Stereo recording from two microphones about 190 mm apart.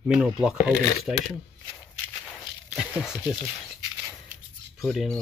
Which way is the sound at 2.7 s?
5° right (ahead or behind).